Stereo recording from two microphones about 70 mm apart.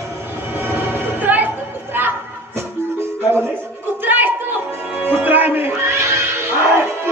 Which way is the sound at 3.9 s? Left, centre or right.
Right.